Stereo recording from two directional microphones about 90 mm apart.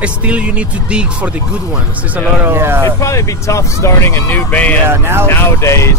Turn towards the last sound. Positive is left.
turn(degrees=35)  # may be behind; listen again after turning